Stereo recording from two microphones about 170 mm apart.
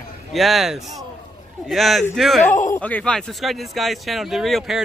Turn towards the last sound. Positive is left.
turn(degrees=0)  # may be behind; listen again after turning